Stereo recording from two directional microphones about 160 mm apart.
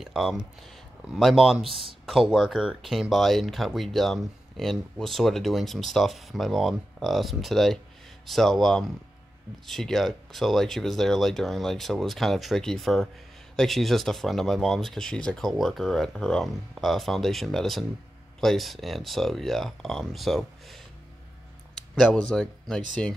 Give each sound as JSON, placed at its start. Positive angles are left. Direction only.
{"t": 0.0, "sound": "speech", "side_deg": 0}
{"t": 21.9, "sound": "speech", "side_deg": 5}